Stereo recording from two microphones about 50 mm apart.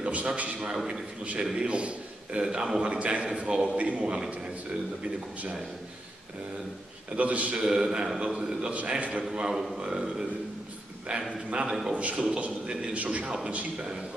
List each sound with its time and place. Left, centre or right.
0.0 s a sound: right
0.4 s a man's voice: right
1.4 s a man's voice: centre
7.2 s a man's voice: right
7.5 s a man's voice: centre
11.6 s a man's voice: centre
11.9 s a man's voice: right